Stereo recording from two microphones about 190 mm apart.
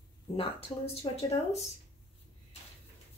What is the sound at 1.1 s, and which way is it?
Speech, 25° left (ahead or behind).